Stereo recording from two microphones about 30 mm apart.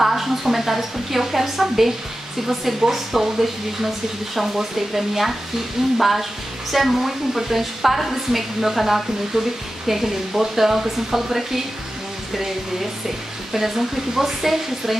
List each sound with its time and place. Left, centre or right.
0.0 s a woman's voice: centre
13.5 s a woman's voice: centre